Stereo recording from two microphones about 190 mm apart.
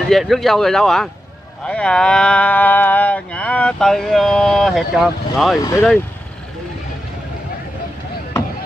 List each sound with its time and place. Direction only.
0.1 s speech: centre (ahead or behind)
5.6 s speech: 15° left (ahead or behind)